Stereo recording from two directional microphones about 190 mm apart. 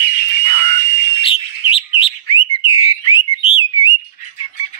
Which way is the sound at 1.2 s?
30° left (ahead or behind).